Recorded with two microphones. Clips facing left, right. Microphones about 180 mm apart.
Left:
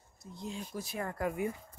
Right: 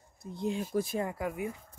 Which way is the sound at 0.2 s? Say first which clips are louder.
Right 8 dB; 60° right (ahead or behind).